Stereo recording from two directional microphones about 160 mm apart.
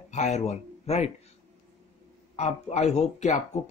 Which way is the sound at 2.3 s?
45° left (ahead or behind).